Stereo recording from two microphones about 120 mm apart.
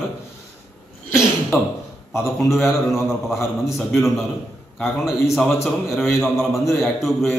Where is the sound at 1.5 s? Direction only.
20° left (ahead or behind).